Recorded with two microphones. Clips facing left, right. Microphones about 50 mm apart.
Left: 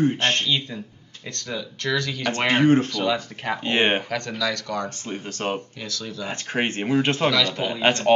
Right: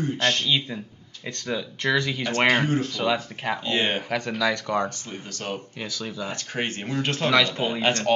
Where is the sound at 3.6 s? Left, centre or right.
Left.